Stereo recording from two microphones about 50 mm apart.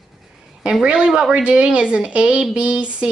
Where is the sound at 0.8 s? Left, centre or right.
Centre.